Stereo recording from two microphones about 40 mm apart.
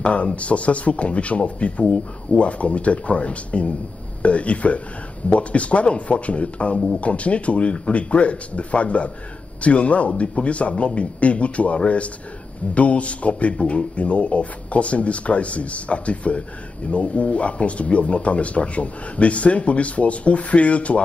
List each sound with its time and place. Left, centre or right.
0.0 s speech: left